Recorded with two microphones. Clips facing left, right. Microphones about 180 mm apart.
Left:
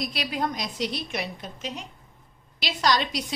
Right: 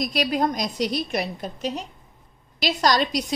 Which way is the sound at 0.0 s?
40° right (ahead or behind).